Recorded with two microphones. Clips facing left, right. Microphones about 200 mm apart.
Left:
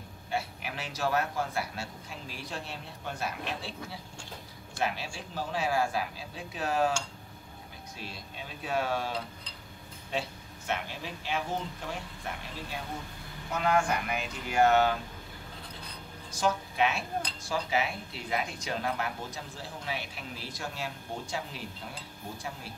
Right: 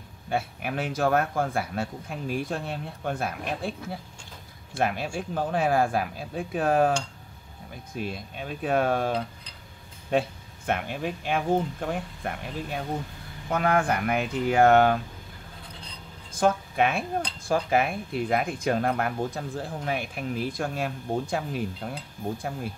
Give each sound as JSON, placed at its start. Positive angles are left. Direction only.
{"t": 0.3, "sound": "speech", "side_deg": -55}
{"t": 7.9, "sound": "speech", "side_deg": -55}
{"t": 16.3, "sound": "speech", "side_deg": -55}